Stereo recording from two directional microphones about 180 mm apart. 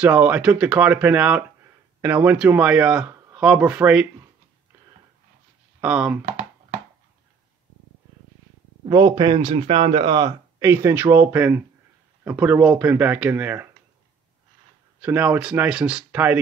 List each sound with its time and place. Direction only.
0.0 s speech: 10° right (ahead or behind)
5.8 s speech: 5° right (ahead or behind)
8.8 s a man's voice: 20° right (ahead or behind)
15.0 s speech: 10° right (ahead or behind)